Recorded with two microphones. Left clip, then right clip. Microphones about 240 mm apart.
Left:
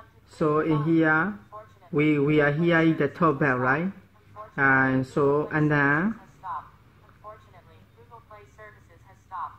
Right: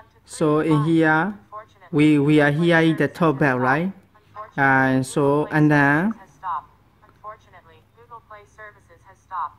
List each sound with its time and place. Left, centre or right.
0.4 s a man's voice: right
1.5 s a sound: right
2.0 s a man's voice: right